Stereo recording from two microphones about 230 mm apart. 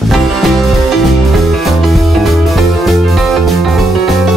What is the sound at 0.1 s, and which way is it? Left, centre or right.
Music, centre.